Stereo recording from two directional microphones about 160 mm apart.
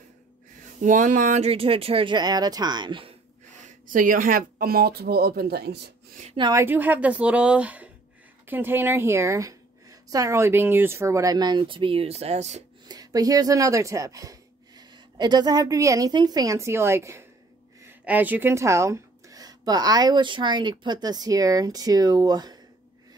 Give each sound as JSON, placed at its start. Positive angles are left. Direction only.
{"t": 0.7, "sound": "speech", "side_deg": -50}
{"t": 3.6, "sound": "speech", "side_deg": -55}
{"t": 6.5, "sound": "a woman's voice", "side_deg": -15}
{"t": 12.8, "sound": "speech", "side_deg": -25}